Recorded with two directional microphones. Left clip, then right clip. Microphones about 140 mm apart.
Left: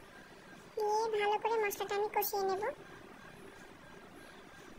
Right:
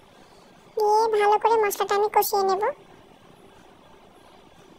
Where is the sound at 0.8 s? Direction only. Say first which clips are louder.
Right 13 dB; 35° right (ahead or behind).